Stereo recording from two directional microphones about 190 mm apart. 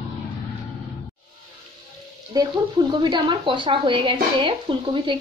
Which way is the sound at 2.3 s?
20° right (ahead or behind).